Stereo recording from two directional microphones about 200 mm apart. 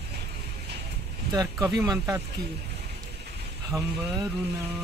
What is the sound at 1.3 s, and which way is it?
Speech, 20° right (ahead or behind).